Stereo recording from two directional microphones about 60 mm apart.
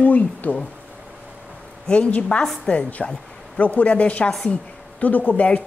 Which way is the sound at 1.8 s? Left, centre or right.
Centre.